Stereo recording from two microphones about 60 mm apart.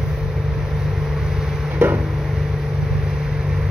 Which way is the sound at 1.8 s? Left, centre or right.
Right.